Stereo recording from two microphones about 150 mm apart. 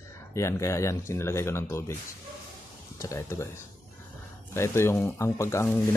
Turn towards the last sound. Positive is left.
turn(degrees=20)  # may be behind; listen again after turning